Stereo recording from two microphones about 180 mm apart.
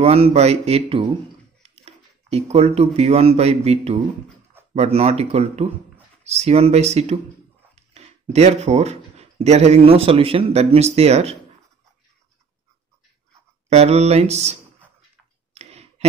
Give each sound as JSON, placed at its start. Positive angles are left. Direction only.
{"t": 0.0, "sound": "speech", "side_deg": -35}
{"t": 13.7, "sound": "speech", "side_deg": -35}
{"t": 15.5, "sound": "clicking", "side_deg": -35}